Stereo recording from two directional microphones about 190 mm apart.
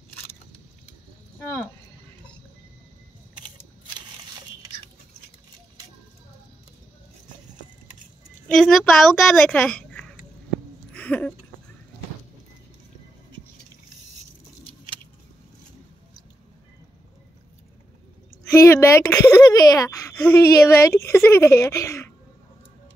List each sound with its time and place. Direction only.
8.5 s a child's voice: centre (ahead or behind)
10.9 s a sound: 5° left (ahead or behind)
18.7 s speech: 15° left (ahead or behind)